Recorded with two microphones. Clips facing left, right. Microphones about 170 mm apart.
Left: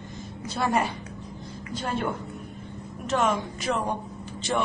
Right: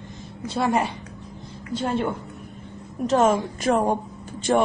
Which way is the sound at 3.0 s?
40° right (ahead or behind).